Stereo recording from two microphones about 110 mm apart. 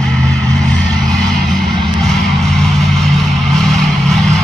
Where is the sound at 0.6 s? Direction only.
5° left (ahead or behind).